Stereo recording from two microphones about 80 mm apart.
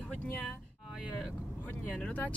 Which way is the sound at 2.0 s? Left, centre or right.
Centre.